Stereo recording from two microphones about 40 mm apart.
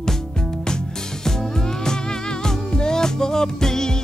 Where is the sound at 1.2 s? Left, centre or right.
Centre.